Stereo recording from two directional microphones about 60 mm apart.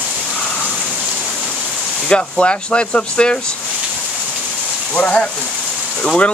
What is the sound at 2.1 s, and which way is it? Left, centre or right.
Speech, centre.